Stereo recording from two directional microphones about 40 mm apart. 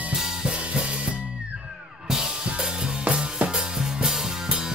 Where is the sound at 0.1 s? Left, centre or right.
Right.